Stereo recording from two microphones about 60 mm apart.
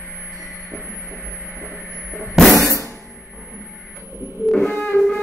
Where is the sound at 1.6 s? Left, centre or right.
Right.